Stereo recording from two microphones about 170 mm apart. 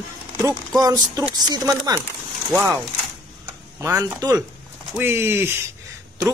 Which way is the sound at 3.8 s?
20° right (ahead or behind).